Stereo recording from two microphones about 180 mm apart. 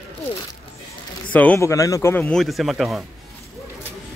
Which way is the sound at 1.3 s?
10° left (ahead or behind).